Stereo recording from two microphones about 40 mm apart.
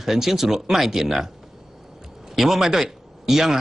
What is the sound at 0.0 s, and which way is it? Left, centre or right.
Speech, centre.